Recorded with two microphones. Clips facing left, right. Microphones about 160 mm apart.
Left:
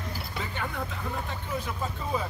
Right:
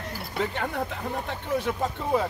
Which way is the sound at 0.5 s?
60° right (ahead or behind).